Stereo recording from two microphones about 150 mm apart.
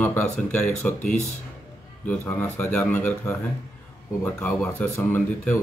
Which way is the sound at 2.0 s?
15° left (ahead or behind).